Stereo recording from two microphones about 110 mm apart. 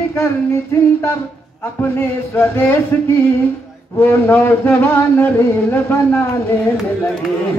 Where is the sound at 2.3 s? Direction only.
20° left (ahead or behind).